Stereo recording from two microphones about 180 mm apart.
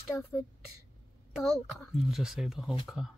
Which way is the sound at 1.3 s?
Centre (ahead or behind).